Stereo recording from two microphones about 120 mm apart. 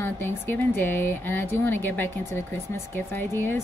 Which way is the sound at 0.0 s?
15° left (ahead or behind).